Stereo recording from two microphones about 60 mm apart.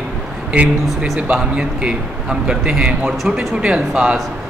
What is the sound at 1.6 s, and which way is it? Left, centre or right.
Speech, centre.